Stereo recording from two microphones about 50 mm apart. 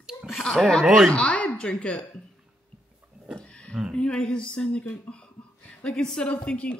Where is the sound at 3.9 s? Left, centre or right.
Centre.